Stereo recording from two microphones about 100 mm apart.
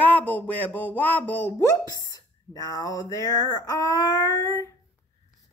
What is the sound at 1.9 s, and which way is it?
Speech, 40° left (ahead or behind).